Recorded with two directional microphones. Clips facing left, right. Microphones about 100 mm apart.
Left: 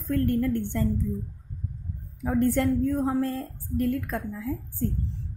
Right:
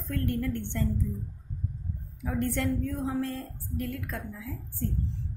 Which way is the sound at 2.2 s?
40° left (ahead or behind).